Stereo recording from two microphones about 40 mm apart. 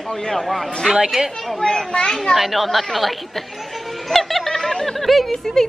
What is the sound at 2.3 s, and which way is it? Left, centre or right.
Speech, centre.